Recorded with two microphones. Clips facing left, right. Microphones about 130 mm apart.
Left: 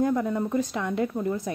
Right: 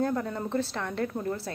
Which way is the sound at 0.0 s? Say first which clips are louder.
Left 4 dB; 15° left (ahead or behind).